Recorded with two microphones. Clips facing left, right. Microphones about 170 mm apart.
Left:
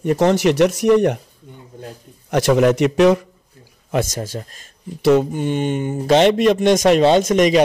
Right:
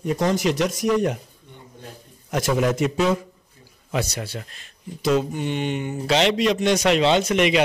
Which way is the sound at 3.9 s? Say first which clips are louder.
Left 5 dB; 45° left (ahead or behind).